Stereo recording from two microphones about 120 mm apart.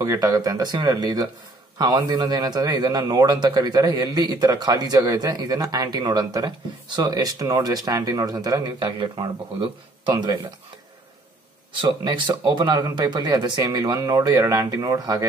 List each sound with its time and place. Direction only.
0.0 s a man's voice: 30° right (ahead or behind)
9.0 s a man's voice: 45° right (ahead or behind)
11.8 s a man's voice: 40° right (ahead or behind)